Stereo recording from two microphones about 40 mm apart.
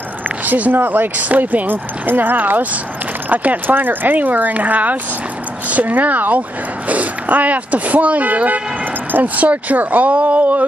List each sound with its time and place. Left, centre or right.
0.5 s speech: right
0.7 s speech: right